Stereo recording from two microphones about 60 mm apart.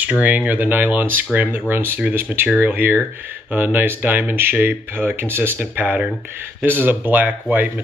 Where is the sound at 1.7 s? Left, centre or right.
Right.